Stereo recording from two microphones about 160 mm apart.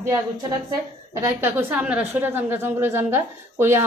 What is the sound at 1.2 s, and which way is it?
A woman's voice, 15° right (ahead or behind).